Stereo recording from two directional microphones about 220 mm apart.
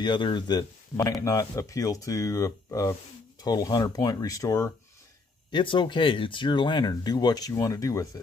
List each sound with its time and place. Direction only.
0.0 s speech: 20° left (ahead or behind)